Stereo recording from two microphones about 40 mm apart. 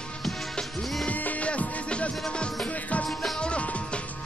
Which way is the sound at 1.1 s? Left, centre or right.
Left.